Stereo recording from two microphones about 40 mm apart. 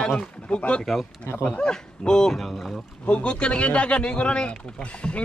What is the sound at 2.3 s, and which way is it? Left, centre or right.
Speech, centre.